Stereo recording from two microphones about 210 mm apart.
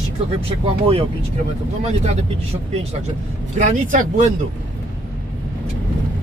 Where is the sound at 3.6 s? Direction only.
35° right (ahead or behind).